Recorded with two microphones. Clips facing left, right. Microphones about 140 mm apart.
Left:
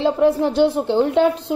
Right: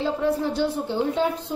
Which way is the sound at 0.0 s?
75° left (ahead or behind).